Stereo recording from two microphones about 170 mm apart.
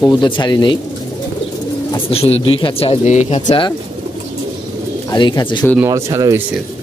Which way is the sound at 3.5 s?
25° left (ahead or behind).